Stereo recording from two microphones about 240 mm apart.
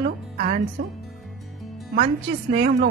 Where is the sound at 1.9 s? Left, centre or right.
Right.